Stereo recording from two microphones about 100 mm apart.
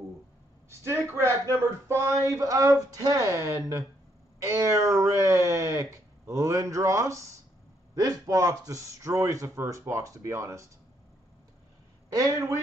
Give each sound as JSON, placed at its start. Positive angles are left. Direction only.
{"t": 0.7, "sound": "speech", "side_deg": -25}
{"t": 12.1, "sound": "speech", "side_deg": -35}